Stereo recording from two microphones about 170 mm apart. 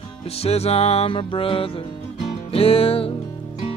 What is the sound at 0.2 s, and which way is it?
Music, 35° left (ahead or behind).